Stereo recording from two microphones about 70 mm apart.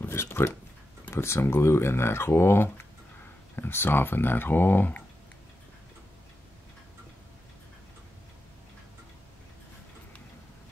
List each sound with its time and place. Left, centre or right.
0.0 s speech: left